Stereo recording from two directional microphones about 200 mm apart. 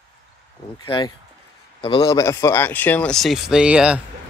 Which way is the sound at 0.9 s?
20° left (ahead or behind).